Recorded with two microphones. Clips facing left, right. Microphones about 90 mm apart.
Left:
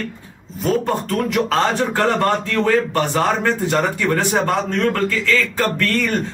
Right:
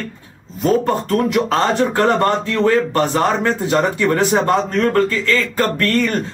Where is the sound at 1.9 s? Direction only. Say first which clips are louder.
Right 3 dB; 35° right (ahead or behind).